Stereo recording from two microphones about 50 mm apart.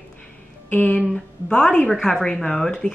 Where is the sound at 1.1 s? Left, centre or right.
Centre.